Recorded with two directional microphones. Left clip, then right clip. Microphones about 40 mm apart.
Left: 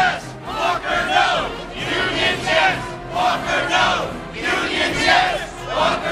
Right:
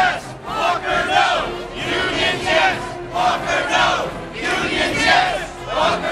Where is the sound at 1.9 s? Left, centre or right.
Centre.